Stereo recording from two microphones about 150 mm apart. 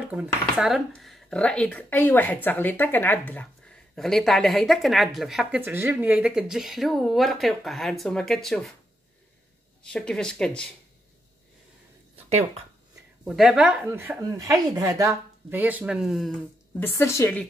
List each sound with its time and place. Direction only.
0.0 s speech: 10° right (ahead or behind)
9.8 s speech: 5° left (ahead or behind)
12.3 s speech: 50° right (ahead or behind)
13.2 s speech: 5° right (ahead or behind)
16.8 s a woman's voice: 20° left (ahead or behind)